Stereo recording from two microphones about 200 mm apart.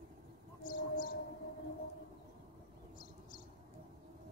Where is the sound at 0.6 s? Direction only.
45° left (ahead or behind).